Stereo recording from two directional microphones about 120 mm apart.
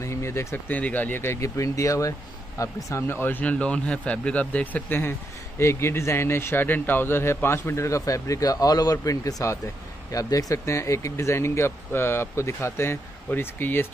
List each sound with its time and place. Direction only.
0.0 s speech: 25° left (ahead or behind)